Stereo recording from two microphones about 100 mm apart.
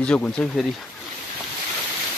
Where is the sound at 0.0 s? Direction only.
10° left (ahead or behind).